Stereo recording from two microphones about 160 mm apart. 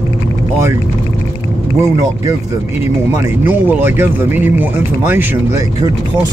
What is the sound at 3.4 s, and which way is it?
Speech, 10° right (ahead or behind).